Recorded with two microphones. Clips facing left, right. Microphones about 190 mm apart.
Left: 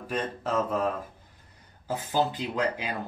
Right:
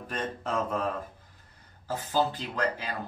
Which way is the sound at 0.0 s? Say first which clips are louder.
Left 3 dB; 10° left (ahead or behind).